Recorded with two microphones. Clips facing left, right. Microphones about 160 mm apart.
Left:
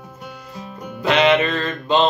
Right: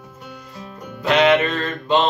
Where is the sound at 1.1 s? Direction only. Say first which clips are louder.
Even; centre (ahead or behind).